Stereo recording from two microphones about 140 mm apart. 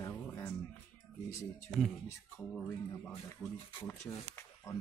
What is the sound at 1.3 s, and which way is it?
Speech, 20° left (ahead or behind).